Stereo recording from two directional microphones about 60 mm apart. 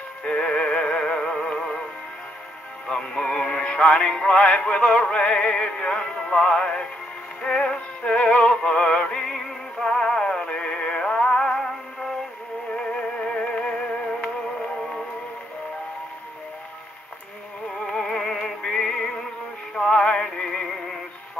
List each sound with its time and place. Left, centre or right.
0.2 s music: centre
2.9 s synthetic singing: centre
7.4 s music: centre
11.5 s music: centre
12.7 s music: centre
17.6 s music: centre